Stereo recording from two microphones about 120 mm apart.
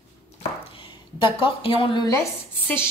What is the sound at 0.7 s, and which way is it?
Speech, 45° left (ahead or behind).